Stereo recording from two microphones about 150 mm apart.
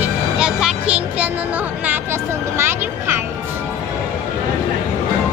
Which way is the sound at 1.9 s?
15° right (ahead or behind).